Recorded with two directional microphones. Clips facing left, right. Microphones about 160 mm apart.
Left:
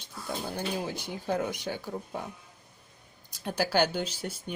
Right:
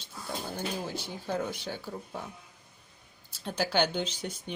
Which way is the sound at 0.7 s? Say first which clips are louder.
Left 2 dB; 15° left (ahead or behind).